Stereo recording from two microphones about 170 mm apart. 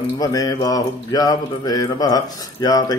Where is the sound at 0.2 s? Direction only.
20° left (ahead or behind).